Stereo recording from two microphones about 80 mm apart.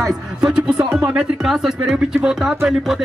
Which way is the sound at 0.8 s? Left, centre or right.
Right.